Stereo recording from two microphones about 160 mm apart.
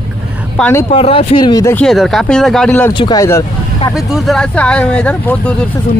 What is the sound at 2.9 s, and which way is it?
Speech, 25° left (ahead or behind).